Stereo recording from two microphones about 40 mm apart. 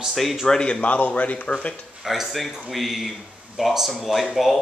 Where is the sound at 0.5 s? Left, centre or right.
Left.